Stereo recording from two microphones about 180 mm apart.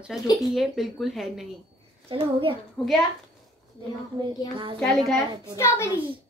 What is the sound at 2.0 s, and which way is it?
Speech, 30° right (ahead or behind).